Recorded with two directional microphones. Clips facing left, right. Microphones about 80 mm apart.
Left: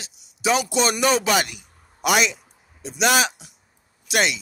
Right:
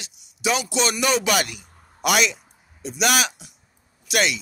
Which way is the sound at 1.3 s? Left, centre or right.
Left.